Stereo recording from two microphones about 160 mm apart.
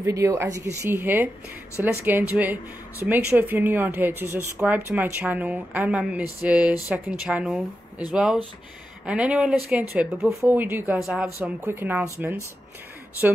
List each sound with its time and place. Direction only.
0.0 s speech: 20° right (ahead or behind)